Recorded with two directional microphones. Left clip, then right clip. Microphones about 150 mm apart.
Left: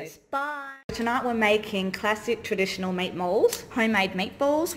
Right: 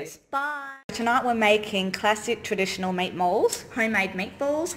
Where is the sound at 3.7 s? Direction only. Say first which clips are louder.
Even; 40° left (ahead or behind).